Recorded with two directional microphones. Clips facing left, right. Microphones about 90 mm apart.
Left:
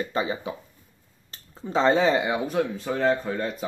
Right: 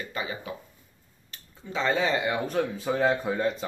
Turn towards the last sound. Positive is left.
turn(degrees=0)  # may be behind; listen again after turning